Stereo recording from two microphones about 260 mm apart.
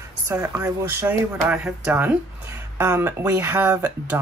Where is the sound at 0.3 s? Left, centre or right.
Centre.